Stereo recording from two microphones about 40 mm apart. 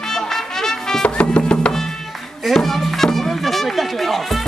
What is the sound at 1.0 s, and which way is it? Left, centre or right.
Music, left.